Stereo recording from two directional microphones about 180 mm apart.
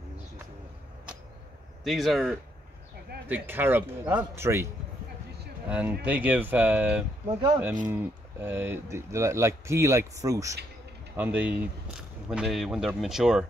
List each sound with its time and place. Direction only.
1.9 s speech: centre (ahead or behind)
3.3 s speech: 10° right (ahead or behind)
5.7 s speech: 10° right (ahead or behind)